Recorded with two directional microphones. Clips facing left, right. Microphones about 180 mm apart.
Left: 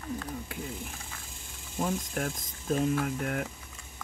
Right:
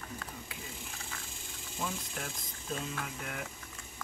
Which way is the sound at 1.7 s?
50° left (ahead or behind).